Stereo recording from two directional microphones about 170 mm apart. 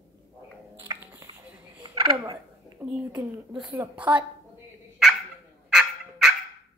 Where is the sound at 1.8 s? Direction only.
25° right (ahead or behind).